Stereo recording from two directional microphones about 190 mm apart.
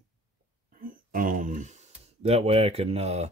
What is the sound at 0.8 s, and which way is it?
Speech, 45° right (ahead or behind).